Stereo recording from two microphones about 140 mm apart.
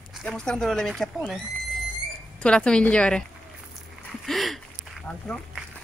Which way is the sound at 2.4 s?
5° left (ahead or behind).